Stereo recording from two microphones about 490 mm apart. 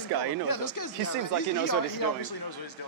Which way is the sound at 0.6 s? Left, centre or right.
Left.